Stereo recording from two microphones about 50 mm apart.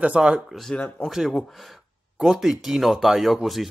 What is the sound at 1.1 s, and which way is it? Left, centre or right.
Speech, centre.